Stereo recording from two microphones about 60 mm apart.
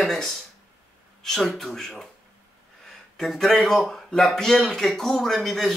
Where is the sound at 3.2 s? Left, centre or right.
Centre.